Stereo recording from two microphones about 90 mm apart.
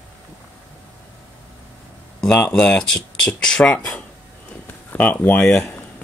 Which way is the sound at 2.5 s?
10° left (ahead or behind).